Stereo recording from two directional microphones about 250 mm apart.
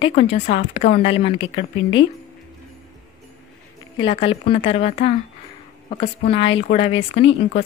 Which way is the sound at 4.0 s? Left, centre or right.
Left.